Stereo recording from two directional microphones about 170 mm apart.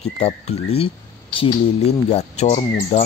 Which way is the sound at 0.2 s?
35° left (ahead or behind).